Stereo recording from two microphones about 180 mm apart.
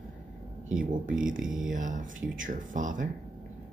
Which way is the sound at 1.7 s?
45° right (ahead or behind).